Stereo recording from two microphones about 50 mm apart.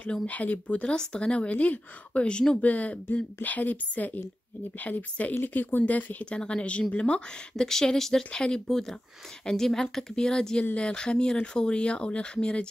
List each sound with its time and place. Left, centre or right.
0.3 s a woman's voice: left
2.6 s a woman's voice: left
6.2 s a woman's voice: left
7.5 s a woman's voice: centre